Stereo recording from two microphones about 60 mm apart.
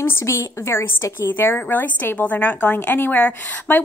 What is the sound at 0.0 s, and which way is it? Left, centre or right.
A woman's voice, left.